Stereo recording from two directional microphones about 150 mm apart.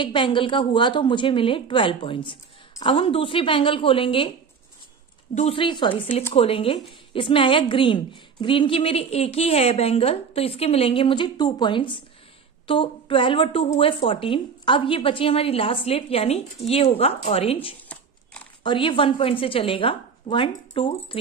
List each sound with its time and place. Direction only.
0.0 s a woman's voice: 35° left (ahead or behind)
5.3 s a woman's voice: 45° left (ahead or behind)
17.8 s a sound: 10° left (ahead or behind)
18.6 s a woman's voice: 35° left (ahead or behind)